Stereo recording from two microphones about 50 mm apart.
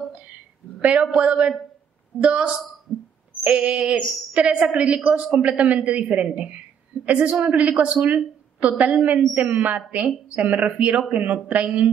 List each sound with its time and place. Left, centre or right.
0.7 s a man's voice: right